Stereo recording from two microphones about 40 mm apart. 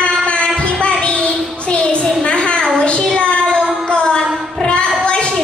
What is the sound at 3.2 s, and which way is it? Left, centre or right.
Child singing, left.